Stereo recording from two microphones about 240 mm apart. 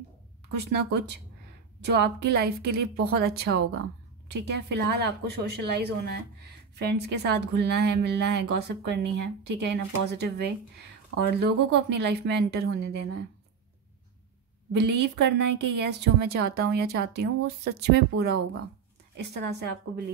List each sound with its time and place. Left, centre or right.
0.6 s a woman's voice: right
14.7 s a woman's voice: right